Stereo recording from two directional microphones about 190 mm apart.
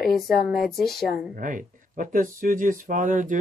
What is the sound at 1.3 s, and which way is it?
Speech, 45° right (ahead or behind).